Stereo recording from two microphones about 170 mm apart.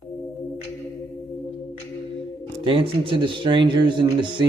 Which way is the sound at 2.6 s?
30° right (ahead or behind).